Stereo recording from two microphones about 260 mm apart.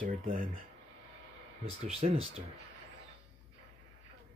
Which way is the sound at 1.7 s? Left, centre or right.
Right.